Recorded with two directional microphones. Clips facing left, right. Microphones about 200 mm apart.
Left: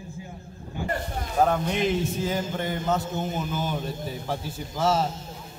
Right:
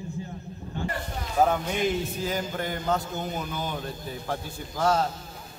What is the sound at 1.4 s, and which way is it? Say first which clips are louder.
A man's voice: left 1 dB; 5° right (ahead or behind).